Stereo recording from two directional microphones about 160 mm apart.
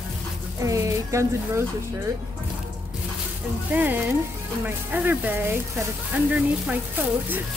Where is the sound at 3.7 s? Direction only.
10° right (ahead or behind).